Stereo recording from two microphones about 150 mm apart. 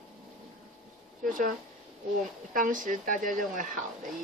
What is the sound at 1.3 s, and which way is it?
Speech, 60° right (ahead or behind).